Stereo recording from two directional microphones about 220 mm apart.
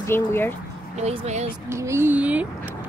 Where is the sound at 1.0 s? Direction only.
30° right (ahead or behind).